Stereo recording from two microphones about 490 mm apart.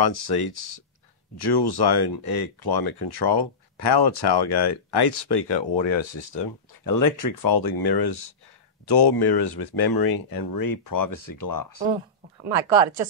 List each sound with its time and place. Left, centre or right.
0.0 s speech: left
6.8 s speech: left
12.4 s speech: right